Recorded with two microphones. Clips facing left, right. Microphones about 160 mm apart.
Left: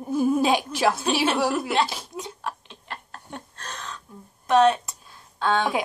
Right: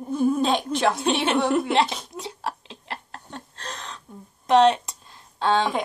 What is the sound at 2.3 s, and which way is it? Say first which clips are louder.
Chuckle: right 5 dB; 30° right (ahead or behind).